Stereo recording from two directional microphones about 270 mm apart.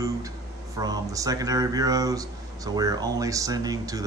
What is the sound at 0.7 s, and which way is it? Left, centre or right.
Speech, centre.